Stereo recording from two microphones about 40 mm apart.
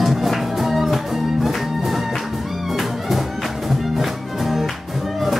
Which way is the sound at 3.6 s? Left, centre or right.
Centre.